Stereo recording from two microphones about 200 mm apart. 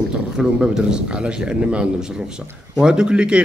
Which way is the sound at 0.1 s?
5° right (ahead or behind).